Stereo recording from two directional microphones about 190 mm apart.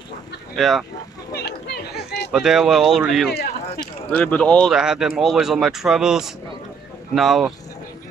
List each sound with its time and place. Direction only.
0.6 s speech: centre (ahead or behind)
1.3 s a sound: 60° left (ahead or behind)
2.3 s speech: 5° right (ahead or behind)